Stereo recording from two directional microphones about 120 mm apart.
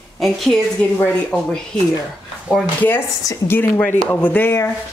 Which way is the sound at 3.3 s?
20° left (ahead or behind).